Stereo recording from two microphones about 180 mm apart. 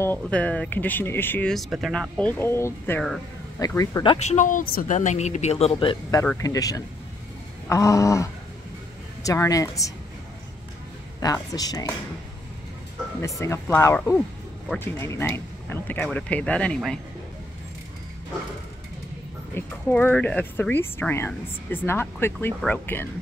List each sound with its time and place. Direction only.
0.0 s speech: 10° left (ahead or behind)
4.0 s speech: 35° left (ahead or behind)
6.2 s speech: 15° left (ahead or behind)
11.1 s speech: 20° left (ahead or behind)
13.2 s speech: 15° left (ahead or behind)
19.5 s speech: 10° left (ahead or behind)